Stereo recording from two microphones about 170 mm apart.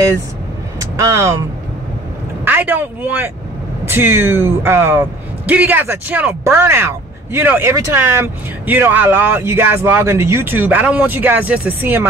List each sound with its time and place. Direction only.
0.7 s vehicle: 20° right (ahead or behind)
2.4 s a man's voice: 10° right (ahead or behind)